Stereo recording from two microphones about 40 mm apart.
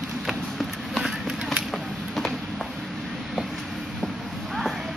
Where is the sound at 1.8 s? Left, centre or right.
Centre.